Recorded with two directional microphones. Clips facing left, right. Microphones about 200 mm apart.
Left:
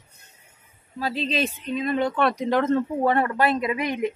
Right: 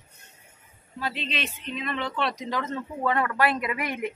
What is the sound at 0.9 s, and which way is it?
Speech, 35° left (ahead or behind).